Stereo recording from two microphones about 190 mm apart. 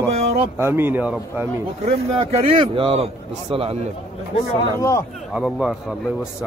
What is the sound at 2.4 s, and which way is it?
Speech, 30° right (ahead or behind).